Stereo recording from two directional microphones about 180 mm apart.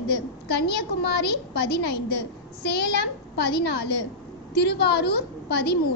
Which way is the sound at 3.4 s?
65° left (ahead or behind).